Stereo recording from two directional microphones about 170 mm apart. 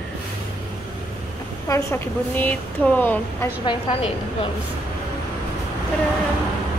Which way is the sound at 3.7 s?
35° left (ahead or behind).